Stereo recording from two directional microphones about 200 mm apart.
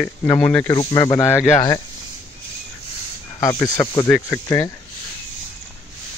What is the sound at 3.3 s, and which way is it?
Speech, 15° left (ahead or behind).